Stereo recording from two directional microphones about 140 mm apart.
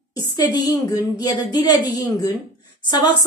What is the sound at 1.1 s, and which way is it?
A woman's voice, 30° left (ahead or behind).